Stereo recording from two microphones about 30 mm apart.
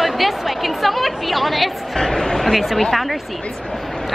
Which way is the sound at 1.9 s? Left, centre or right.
Centre.